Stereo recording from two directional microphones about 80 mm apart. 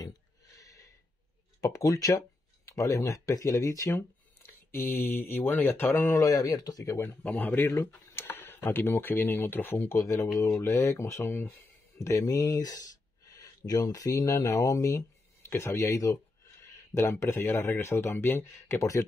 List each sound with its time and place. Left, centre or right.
0.6 s gasp: left
1.6 s speech: left
3.9 s a sound: left
5.3 s speech: left
6.0 s speech: left
7.2 s speech: left